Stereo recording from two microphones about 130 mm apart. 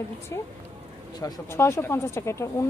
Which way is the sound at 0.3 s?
25° left (ahead or behind).